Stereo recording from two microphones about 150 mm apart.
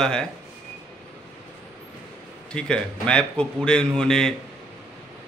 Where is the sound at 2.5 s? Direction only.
5° left (ahead or behind).